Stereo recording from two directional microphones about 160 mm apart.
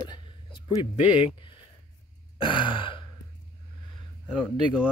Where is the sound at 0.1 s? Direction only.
30° left (ahead or behind).